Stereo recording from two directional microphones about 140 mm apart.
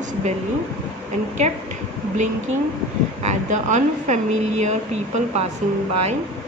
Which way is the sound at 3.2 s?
55° right (ahead or behind).